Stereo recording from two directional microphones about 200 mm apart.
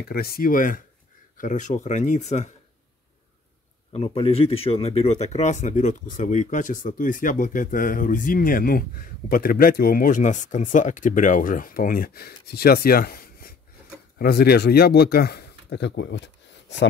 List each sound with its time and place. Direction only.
0.1 s speech: 50° left (ahead or behind)
3.9 s speech: 30° left (ahead or behind); by 16.7 s 60° left (ahead or behind)